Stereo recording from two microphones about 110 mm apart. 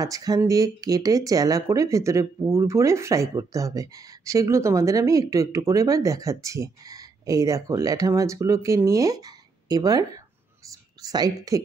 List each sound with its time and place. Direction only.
0.0 s a woman's voice: 35° right (ahead or behind)